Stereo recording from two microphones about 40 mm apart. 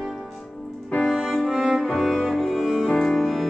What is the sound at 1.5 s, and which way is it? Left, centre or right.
Music, centre.